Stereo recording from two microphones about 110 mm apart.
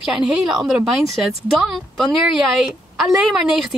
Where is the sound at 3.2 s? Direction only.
Centre (ahead or behind).